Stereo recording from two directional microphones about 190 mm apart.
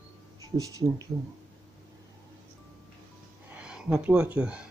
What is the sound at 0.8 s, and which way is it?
Speech, 10° right (ahead or behind).